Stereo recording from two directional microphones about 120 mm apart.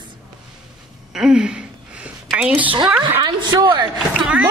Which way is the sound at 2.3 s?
10° right (ahead or behind).